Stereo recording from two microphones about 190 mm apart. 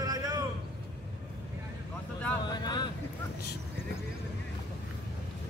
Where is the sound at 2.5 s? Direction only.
20° left (ahead or behind).